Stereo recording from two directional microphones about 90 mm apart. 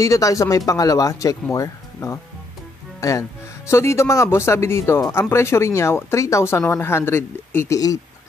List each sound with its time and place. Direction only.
0.0 s speech: 40° left (ahead or behind)